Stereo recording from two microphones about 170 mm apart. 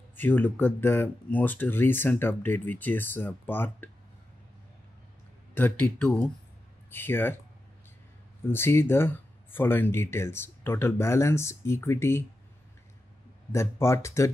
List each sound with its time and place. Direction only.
0.1 s speech: 10° left (ahead or behind)
5.5 s speech: 10° left (ahead or behind)
8.5 s speech: 15° left (ahead or behind)
13.5 s speech: 15° left (ahead or behind)